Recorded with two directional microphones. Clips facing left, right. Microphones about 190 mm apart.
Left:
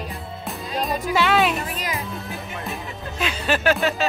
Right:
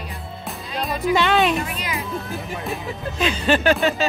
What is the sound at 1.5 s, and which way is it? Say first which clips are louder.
Speech: right 2 dB; 40° left (ahead or behind).